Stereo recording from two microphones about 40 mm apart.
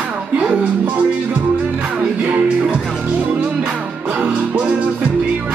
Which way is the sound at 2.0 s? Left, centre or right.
Right.